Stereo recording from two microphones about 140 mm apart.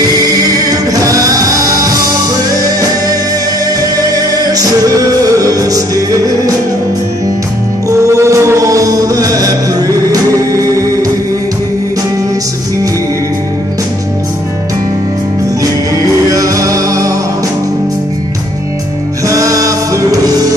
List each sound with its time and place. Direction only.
0.6 s music: 25° right (ahead or behind)
3.8 s music: 25° right (ahead or behind)
7.9 s music: 20° right (ahead or behind)
16.3 s music: 25° right (ahead or behind)
19.2 s music: 25° right (ahead or behind)